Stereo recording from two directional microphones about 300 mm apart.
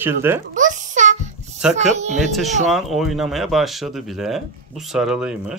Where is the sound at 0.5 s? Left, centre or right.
Right.